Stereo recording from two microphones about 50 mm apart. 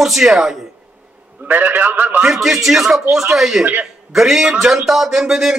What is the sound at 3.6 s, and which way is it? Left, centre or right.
Speech, right.